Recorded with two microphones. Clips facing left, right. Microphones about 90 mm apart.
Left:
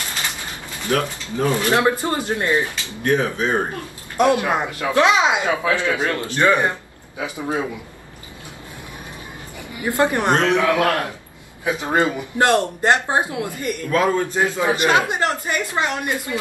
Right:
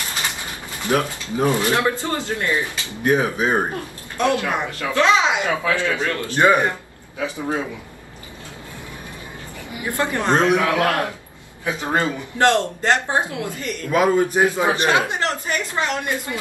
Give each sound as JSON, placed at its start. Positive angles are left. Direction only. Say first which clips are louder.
{"t": 0.8, "sound": "a man's voice", "louder": "right 1 dB", "side_deg": -15}
{"t": 1.7, "sound": "speech", "louder": "left 2 dB", "side_deg": 20}
{"t": 3.0, "sound": "a man's voice", "louder": "right 1 dB", "side_deg": -10}
{"t": 4.2, "sound": "speech", "louder": "left 3 dB", "side_deg": 20}
{"t": 6.3, "sound": "a man's voice", "louder": "right 2 dB", "side_deg": -15}
{"t": 7.2, "sound": "a man's voice", "louder": "even", "side_deg": 15}
{"t": 9.8, "sound": "speech", "louder": "left 4 dB", "side_deg": 20}
{"t": 10.3, "sound": "a man's voice", "louder": "even", "side_deg": -15}
{"t": 11.6, "sound": "speech", "louder": "left 2 dB", "side_deg": 15}
{"t": 13.8, "sound": "a man's voice", "louder": "right 2 dB", "side_deg": -15}
{"t": 15.0, "sound": "speech", "louder": "left 2 dB", "side_deg": 20}